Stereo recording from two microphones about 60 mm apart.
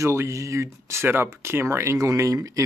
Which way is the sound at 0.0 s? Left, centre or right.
Right.